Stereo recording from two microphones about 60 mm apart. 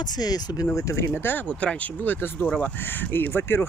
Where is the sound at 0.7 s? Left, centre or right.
Left.